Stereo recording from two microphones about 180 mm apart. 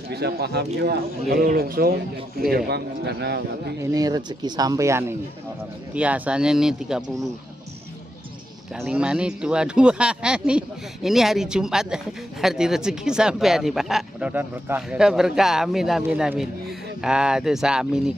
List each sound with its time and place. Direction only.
0.1 s speech: 65° right (ahead or behind)
2.5 s speech: 65° right (ahead or behind)
3.8 s speech: 20° right (ahead or behind); by 7.0 s 5° right (ahead or behind)
8.7 s speech: 5° right (ahead or behind)